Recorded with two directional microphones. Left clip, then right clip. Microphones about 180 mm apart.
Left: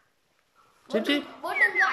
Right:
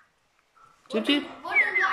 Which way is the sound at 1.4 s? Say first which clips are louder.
Right 6 dB; 70° left (ahead or behind).